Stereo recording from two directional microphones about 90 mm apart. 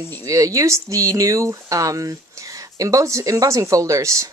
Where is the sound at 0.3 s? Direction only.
40° right (ahead or behind).